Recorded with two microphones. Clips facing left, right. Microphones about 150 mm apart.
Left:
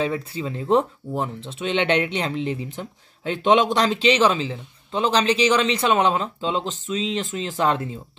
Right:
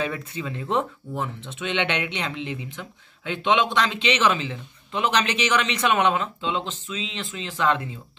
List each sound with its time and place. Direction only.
0.0 s speech: 30° left (ahead or behind)